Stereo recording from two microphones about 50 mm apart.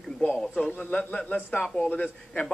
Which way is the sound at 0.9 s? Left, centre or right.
Left.